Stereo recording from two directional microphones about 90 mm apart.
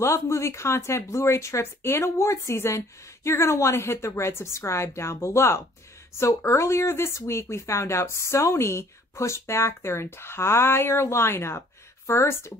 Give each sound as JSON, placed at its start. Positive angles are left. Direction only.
{"t": 0.0, "sound": "speech", "side_deg": 30}